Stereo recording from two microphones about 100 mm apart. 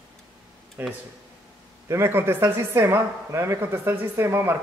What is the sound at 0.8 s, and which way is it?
A woman's voice, 20° right (ahead or behind).